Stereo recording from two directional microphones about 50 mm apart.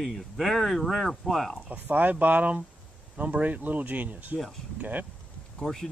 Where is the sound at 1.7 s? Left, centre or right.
Right.